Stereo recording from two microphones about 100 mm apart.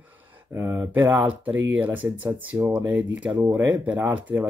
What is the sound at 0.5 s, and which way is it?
Speech, 25° right (ahead or behind).